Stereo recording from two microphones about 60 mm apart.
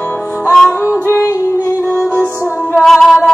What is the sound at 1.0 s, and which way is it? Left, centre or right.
Music, left.